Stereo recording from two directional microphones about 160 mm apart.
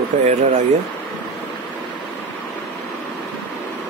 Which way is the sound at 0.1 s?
50° right (ahead or behind).